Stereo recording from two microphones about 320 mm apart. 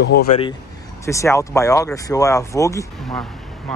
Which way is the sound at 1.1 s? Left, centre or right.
Centre.